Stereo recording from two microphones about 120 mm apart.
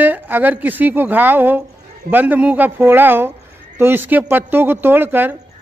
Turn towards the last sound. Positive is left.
turn(degrees=-15)  # may be behind; listen again after turning